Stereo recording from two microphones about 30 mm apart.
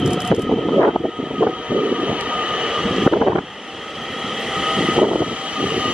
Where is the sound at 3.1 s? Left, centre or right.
Centre.